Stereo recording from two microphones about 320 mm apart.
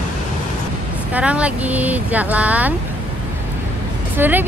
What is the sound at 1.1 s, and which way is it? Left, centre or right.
Speech, centre.